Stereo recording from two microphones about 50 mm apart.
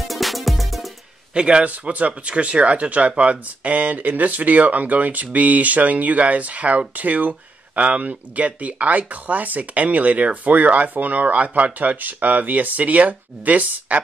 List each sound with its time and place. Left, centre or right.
0.1 s music: centre
1.3 s a man's voice: centre
1.7 s speech: right